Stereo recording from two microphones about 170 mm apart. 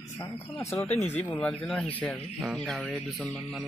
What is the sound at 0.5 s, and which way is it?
A man's voice, 20° left (ahead or behind).